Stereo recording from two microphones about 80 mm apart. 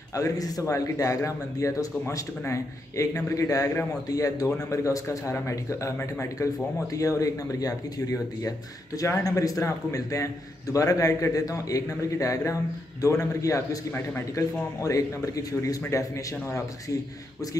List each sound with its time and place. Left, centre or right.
0.1 s a man's voice: left